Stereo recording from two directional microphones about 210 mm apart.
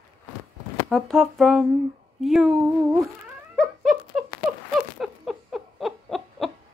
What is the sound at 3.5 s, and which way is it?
Dog, centre (ahead or behind).